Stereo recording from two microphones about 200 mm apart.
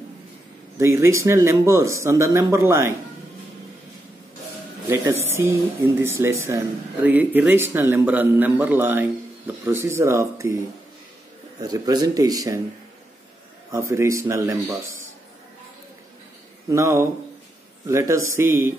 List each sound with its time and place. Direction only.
0.7 s speech: 15° right (ahead or behind)
4.8 s speech: 10° right (ahead or behind)
11.6 s speech: 20° right (ahead or behind)
13.7 s speech: 15° right (ahead or behind)
16.6 s speech: 15° right (ahead or behind)